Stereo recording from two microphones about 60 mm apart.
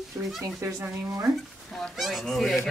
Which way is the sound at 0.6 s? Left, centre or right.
Right.